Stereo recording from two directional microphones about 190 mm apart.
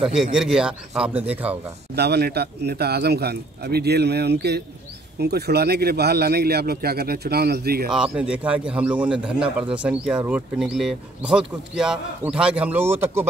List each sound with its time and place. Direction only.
0.0 s a man's voice: 5° right (ahead or behind)
2.0 s a man's voice: 60° right (ahead or behind)
7.9 s a man's voice: 5° right (ahead or behind)